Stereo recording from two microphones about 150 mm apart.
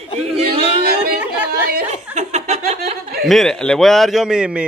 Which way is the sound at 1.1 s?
10° right (ahead or behind).